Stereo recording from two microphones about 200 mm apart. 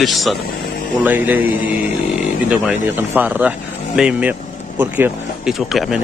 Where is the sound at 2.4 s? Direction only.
10° right (ahead or behind).